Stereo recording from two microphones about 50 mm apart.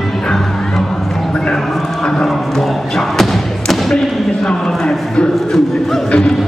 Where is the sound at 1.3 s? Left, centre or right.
Centre.